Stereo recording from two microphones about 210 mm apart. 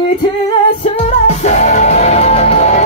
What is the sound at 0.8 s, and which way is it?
Music, 30° left (ahead or behind).